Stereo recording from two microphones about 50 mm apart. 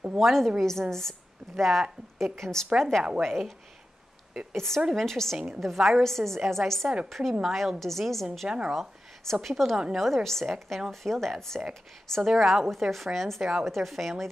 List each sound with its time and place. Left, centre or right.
0.2 s a woman's voice: centre
4.6 s a woman's voice: centre
8.5 s speech: centre
8.7 s a woman's voice: centre
10.9 s a woman's voice: centre
12.2 s speech: centre